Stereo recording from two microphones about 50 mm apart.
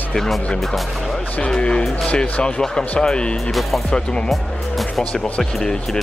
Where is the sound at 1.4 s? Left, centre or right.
Centre.